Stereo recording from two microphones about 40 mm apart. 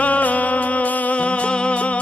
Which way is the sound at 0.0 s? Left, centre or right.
Left.